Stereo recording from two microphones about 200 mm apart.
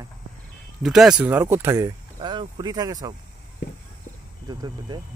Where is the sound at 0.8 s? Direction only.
Centre (ahead or behind); by 3.1 s 20° right (ahead or behind).